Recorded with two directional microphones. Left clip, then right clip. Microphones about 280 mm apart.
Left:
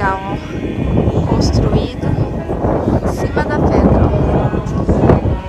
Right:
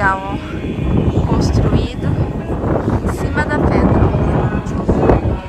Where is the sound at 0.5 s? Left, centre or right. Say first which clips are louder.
Left 3 dB; left.